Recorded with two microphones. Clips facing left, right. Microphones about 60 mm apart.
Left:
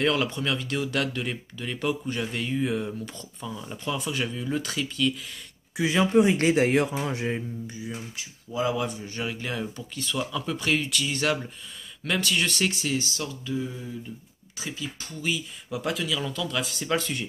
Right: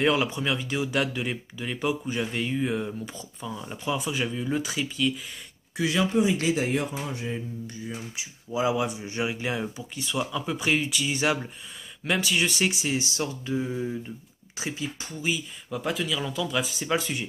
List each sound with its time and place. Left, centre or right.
0.0 s speech: centre
6.1 s a man's voice: left
6.6 s speech: left
7.9 s speech: centre
13.2 s a sound: right
15.7 s speech: centre